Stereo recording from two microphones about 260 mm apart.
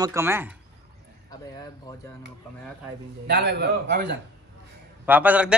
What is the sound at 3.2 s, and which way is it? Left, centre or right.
Speech, right.